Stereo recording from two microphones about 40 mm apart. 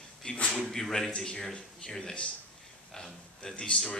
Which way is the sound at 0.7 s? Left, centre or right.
Centre.